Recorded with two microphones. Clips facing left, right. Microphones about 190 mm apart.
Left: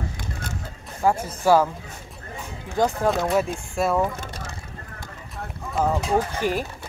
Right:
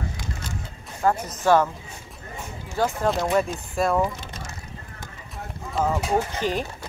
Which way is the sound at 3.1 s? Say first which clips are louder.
Left 1 dB; centre (ahead or behind).